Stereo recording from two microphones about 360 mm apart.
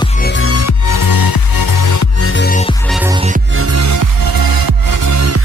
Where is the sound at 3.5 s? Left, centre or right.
Right.